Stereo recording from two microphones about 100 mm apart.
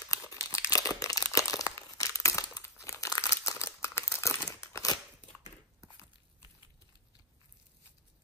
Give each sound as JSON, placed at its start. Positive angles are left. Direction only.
{"t": 0.3, "sound": "crumpling", "side_deg": 30}
{"t": 4.5, "sound": "crunch", "side_deg": 35}